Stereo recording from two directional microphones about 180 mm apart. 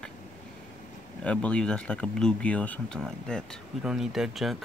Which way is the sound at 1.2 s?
5° left (ahead or behind).